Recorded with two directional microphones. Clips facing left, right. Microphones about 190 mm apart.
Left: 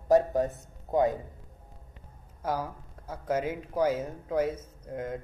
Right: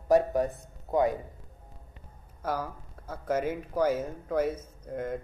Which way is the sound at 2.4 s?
15° left (ahead or behind).